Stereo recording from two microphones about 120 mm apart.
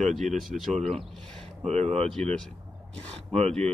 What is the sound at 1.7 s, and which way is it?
Speech, 60° right (ahead or behind).